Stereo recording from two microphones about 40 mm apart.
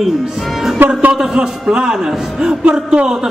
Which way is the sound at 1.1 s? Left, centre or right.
Right.